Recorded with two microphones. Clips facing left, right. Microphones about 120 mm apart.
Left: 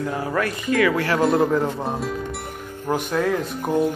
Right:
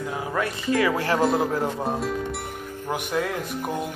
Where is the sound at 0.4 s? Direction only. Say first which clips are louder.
Left 2 dB; 25° right (ahead or behind).